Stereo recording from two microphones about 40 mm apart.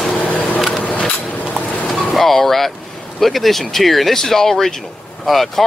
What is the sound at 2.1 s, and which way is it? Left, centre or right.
Speech, centre.